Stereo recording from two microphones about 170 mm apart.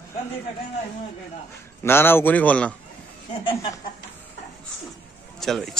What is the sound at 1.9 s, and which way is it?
Speech, 15° left (ahead or behind).